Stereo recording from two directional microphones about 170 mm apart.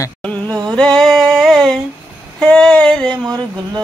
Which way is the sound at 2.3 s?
5° left (ahead or behind).